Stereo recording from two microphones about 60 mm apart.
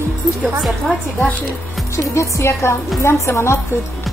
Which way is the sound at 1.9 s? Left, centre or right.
Left.